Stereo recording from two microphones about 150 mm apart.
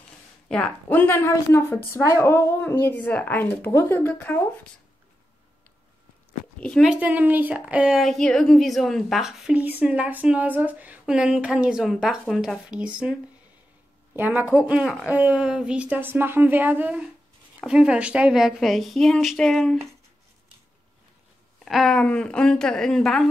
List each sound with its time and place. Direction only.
0.5 s a woman's voice: 5° left (ahead or behind)
6.6 s speech: 5° left (ahead or behind)
6.9 s a woman's voice: 10° right (ahead or behind)
14.1 s a woman's voice: 10° right (ahead or behind)
21.6 s a woman's voice: centre (ahead or behind)